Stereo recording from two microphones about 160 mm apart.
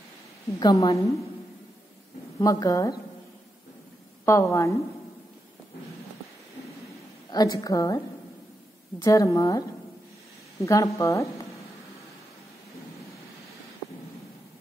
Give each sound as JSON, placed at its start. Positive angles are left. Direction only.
{"t": 0.6, "sound": "a woman's voice", "side_deg": 25}
{"t": 2.3, "sound": "a woman's voice", "side_deg": 20}
{"t": 4.3, "sound": "a woman's voice", "side_deg": 20}
{"t": 7.2, "sound": "a woman's voice", "side_deg": 25}
{"t": 9.0, "sound": "a woman's voice", "side_deg": 20}